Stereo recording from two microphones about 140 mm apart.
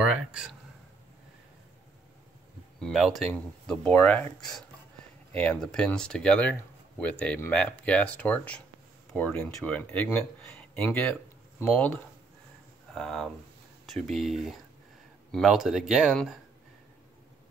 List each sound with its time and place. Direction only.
0.0 s speech: 5° right (ahead or behind)
2.8 s speech: centre (ahead or behind)